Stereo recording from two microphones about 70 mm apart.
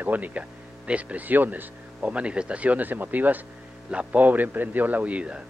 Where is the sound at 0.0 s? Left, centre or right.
Right.